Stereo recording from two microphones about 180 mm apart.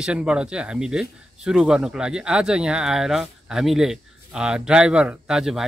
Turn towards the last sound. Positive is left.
turn(degrees=0)  # may be behind; listen again after turning